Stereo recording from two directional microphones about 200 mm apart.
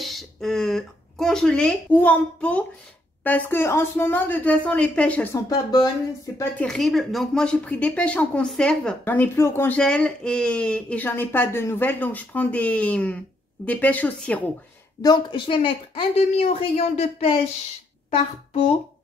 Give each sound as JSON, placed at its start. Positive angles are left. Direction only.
{"t": 0.0, "sound": "a sound", "side_deg": 0}
{"t": 2.0, "sound": "speech", "side_deg": 5}
{"t": 5.5, "sound": "speech", "side_deg": 20}
{"t": 6.6, "sound": "speech", "side_deg": 0}
{"t": 15.0, "sound": "speech", "side_deg": 20}